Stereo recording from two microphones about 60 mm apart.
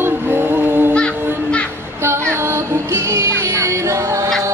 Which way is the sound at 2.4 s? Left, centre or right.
Right.